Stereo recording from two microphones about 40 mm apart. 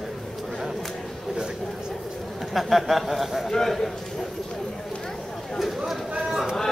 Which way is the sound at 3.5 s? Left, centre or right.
Centre.